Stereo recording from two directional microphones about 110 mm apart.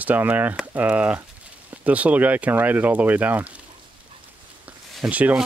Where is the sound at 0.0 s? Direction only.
15° right (ahead or behind).